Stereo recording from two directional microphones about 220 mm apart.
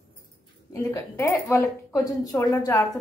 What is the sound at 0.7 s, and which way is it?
A woman's voice, 15° left (ahead or behind).